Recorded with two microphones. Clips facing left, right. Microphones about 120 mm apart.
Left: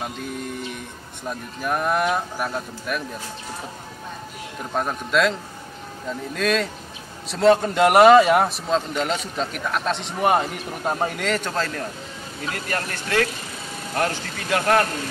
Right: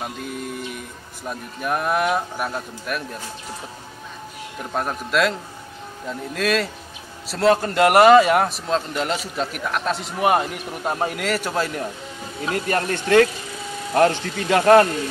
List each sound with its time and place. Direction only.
0.0 s a man's voice: centre (ahead or behind)
4.7 s a man's voice: centre (ahead or behind)
12.4 s speech: 30° right (ahead or behind)